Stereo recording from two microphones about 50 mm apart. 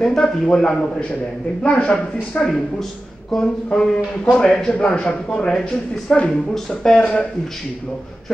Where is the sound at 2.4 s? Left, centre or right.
Centre; by 7.3 s left.